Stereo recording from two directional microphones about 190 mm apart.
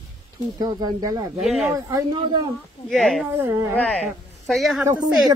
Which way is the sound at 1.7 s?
20° right (ahead or behind).